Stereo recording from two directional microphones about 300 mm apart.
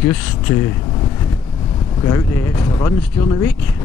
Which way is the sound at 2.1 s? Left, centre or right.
Centre.